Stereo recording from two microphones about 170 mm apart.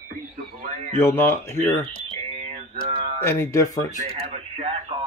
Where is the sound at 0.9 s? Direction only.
15° left (ahead or behind).